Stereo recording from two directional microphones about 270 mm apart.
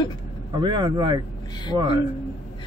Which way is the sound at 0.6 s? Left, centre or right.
Centre.